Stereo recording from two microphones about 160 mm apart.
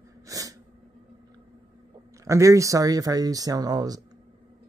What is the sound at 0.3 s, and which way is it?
Sneeze, 20° right (ahead or behind).